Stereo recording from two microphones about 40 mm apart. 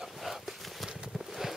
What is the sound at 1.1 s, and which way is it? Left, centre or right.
Horse, centre.